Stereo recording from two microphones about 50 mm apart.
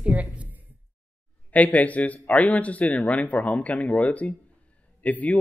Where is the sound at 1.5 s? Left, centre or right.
Left.